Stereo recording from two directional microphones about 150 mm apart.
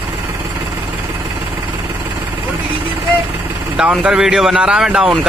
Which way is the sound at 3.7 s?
5° right (ahead or behind).